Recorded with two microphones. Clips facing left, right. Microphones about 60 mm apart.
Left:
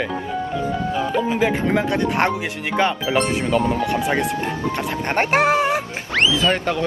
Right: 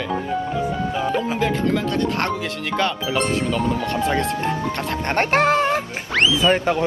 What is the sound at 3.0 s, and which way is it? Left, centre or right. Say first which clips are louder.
Speech: left 1 dB; centre.